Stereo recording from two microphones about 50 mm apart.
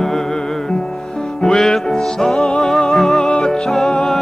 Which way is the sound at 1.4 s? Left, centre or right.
Centre.